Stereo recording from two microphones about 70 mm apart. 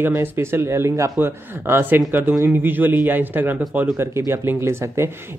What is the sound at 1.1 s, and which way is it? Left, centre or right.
A man's voice, right.